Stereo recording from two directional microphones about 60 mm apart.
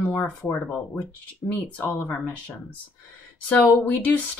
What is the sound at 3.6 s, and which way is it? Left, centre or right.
Speech, left.